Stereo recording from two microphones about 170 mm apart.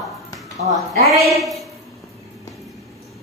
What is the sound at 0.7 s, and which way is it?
Speech, 20° right (ahead or behind).